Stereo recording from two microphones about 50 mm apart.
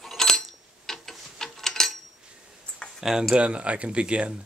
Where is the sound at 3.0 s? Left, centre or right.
Centre.